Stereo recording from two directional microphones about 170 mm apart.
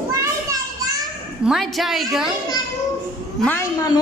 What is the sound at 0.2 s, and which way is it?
Children playing, 20° right (ahead or behind).